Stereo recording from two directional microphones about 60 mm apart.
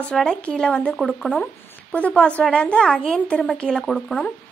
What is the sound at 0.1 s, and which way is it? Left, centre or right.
A woman's voice, centre.